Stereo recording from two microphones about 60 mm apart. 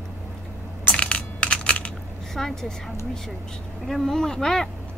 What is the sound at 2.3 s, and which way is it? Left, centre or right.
Speech, centre.